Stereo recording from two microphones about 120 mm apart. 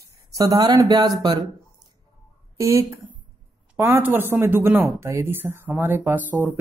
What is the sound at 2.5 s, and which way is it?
Speech, 25° right (ahead or behind).